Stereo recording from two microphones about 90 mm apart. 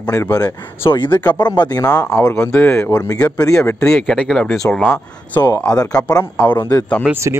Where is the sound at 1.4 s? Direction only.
55° left (ahead or behind).